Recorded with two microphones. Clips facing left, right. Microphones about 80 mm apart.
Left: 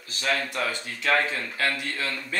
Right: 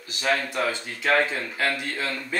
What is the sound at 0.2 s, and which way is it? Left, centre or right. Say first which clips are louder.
A man's voice: right 3 dB; right.